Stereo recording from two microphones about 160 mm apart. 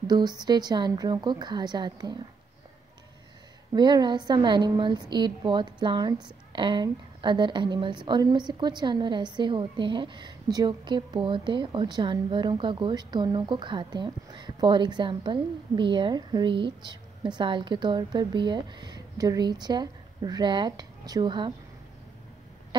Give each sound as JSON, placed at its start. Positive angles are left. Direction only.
{"t": 0.0, "sound": "a woman's voice", "side_deg": -25}
{"t": 3.7, "sound": "a woman's voice", "side_deg": -25}